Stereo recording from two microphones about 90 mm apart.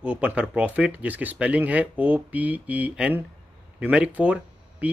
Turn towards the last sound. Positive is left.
turn(degrees=-15)  # may be behind; listen again after turning